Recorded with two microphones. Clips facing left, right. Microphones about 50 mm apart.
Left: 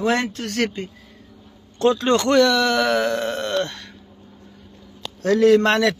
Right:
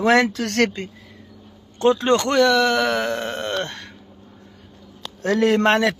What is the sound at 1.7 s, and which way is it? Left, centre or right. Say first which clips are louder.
Speech: right 1 dB; right.